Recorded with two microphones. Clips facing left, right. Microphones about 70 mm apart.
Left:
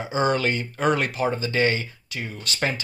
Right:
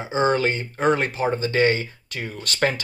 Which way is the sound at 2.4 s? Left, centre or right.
Right.